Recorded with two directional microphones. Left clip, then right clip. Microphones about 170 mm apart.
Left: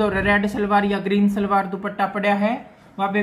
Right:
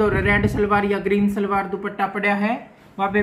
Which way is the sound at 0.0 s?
20° left (ahead or behind).